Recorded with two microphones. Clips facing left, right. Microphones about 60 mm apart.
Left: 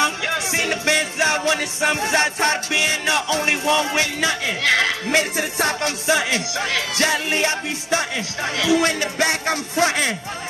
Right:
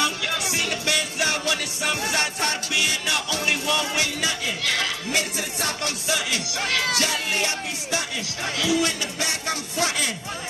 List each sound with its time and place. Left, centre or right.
0.0 s music: left
8.5 s speech: left